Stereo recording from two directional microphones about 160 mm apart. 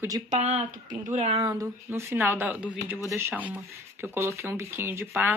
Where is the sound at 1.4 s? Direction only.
25° right (ahead or behind).